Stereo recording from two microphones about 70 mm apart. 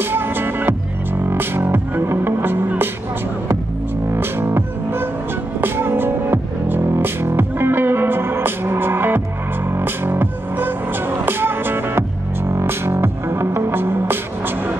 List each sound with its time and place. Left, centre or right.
0.0 s music: right
4.1 s music: right